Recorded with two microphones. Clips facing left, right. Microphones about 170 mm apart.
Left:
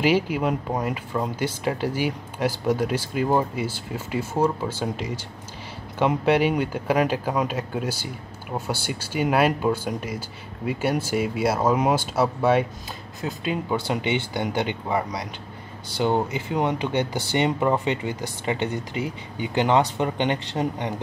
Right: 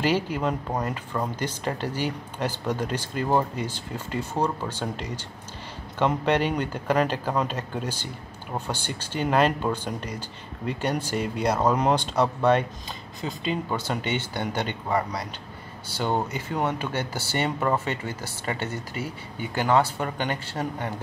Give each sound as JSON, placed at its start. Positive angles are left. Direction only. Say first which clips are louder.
{"t": 0.0, "sound": "speech", "louder": "left 3 dB", "side_deg": 10}